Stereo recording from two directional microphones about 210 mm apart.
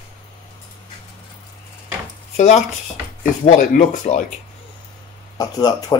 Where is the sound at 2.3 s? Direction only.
35° left (ahead or behind).